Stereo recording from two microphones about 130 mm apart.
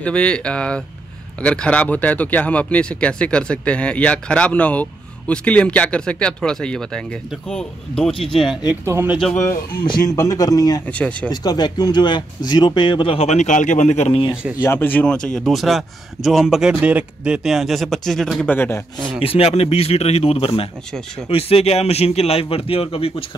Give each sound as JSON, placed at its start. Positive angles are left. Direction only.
{"t": 0.0, "sound": "a man's voice", "side_deg": 10}
{"t": 8.6, "sound": "speech", "side_deg": -15}
{"t": 9.8, "sound": "speech", "side_deg": 30}
{"t": 10.9, "sound": "speech", "side_deg": 10}
{"t": 11.2, "sound": "speech", "side_deg": 30}
{"t": 14.6, "sound": "a man's voice", "side_deg": 15}
{"t": 19.2, "sound": "speech", "side_deg": 50}